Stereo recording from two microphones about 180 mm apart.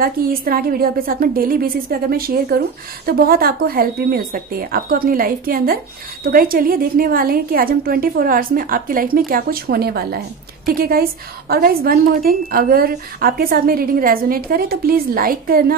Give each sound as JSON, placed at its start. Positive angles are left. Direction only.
{"t": 0.0, "sound": "a woman's voice", "side_deg": -55}